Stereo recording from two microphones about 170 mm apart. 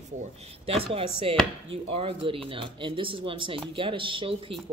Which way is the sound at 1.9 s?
35° right (ahead or behind).